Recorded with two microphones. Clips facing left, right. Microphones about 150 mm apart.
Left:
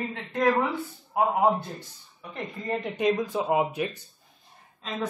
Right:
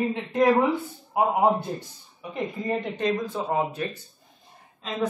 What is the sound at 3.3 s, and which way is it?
Speech, 15° left (ahead or behind).